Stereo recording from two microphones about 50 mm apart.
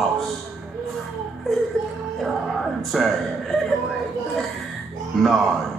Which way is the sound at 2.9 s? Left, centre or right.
Centre.